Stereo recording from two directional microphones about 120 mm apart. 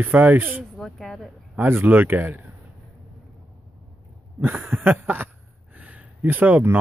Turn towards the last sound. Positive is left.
turn(degrees=-15)  # may be behind; listen again after turning